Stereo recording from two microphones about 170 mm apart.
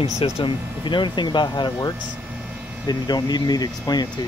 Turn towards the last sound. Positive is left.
turn(degrees=25)  # may be behind; listen again after turning